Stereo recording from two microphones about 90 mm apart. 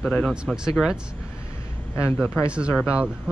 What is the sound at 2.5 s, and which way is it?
Speech, 10° right (ahead or behind).